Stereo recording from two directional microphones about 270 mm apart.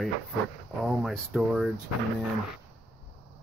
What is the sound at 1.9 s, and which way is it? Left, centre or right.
Speech, left.